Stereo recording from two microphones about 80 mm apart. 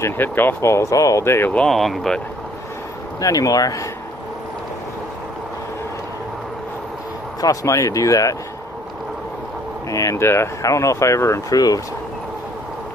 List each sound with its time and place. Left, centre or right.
0.0 s speech: left
1.2 s speech: left
1.7 s speech: centre
3.2 s speech: left
7.4 s speech: left
9.8 s speech: left
11.5 s speech: left